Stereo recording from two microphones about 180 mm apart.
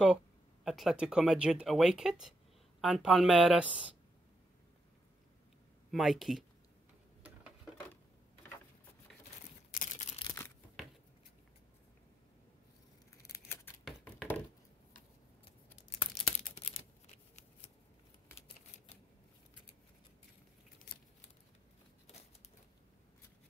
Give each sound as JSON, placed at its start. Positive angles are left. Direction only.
{"t": 0.7, "sound": "speech", "side_deg": 0}
{"t": 5.9, "sound": "speech", "side_deg": 0}
{"t": 9.7, "sound": "single-lens reflex camera", "side_deg": 45}
{"t": 13.2, "sound": "scissors", "side_deg": 20}
{"t": 14.0, "sound": "a sound", "side_deg": 10}
{"t": 16.0, "sound": "a sound", "side_deg": 30}